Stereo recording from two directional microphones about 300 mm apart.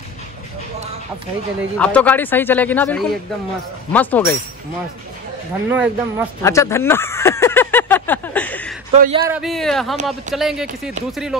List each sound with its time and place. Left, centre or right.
1.8 s speech: centre
5.7 s speech: centre
6.4 s a sound: centre
8.9 s speech: right
9.3 s speech: centre